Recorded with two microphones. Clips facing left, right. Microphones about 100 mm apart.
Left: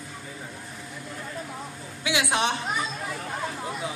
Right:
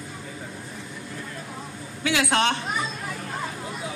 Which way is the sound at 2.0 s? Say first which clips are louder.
Right 3 dB; 15° left (ahead or behind).